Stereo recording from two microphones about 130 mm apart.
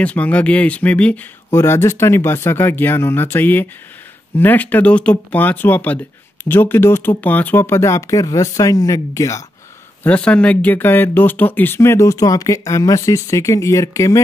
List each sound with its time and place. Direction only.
0.0 s speech: 10° left (ahead or behind)
10.0 s speech: 10° left (ahead or behind)